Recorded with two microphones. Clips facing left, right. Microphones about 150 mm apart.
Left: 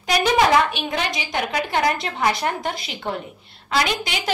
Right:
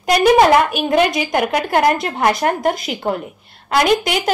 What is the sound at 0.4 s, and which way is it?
A woman's voice, 50° right (ahead or behind).